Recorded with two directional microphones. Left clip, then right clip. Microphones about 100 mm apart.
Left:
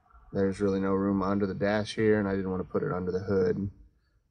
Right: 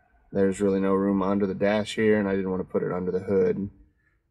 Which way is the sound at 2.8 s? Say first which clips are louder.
Right 3 dB; 40° right (ahead or behind).